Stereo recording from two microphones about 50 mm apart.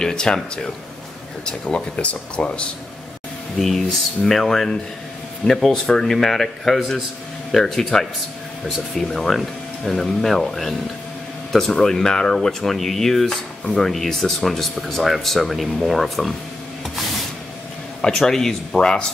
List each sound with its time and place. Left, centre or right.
0.0 s a sound: centre
2.0 s speech: left
3.5 s speech: centre
18.0 s speech: centre